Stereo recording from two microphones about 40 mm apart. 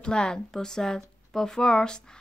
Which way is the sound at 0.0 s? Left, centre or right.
Left.